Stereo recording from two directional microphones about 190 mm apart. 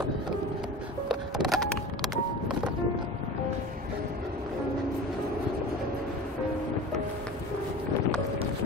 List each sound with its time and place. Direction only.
1.4 s music: centre (ahead or behind)